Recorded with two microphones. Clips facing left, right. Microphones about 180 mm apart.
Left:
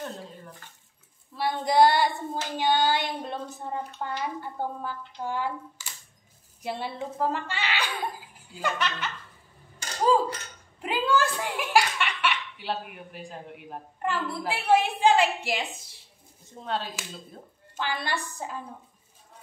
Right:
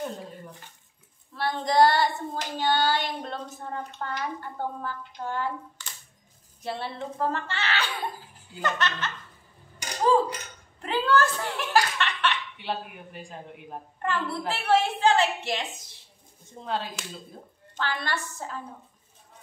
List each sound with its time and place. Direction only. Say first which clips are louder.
1.3 s speech: left 1 dB; 10° left (ahead or behind)
9.8 s a sound: right 2 dB; 15° right (ahead or behind)
10.8 s speech: right 1 dB; 10° left (ahead or behind)
16.6 s speech: even; centre (ahead or behind)
17.7 s speech: even; 10° left (ahead or behind)